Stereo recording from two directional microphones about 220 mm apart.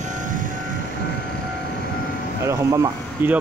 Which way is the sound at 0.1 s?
35° right (ahead or behind).